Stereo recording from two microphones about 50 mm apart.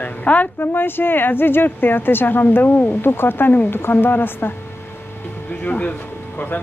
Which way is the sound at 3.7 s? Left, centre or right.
Left.